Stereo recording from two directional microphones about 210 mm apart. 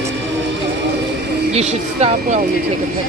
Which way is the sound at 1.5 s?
30° right (ahead or behind).